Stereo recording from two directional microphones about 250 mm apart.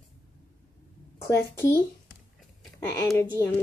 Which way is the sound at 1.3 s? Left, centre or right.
Centre.